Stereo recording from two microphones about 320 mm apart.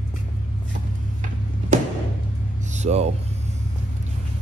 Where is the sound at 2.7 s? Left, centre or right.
Right.